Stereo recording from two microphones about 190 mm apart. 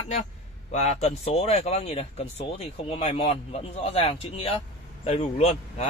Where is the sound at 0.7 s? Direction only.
35° left (ahead or behind).